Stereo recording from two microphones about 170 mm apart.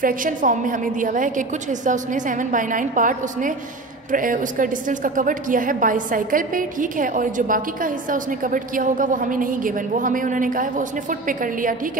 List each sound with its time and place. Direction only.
0.0 s a woman's voice: 50° right (ahead or behind)